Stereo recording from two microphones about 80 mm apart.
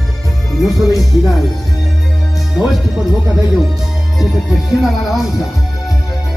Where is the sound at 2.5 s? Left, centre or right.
Centre.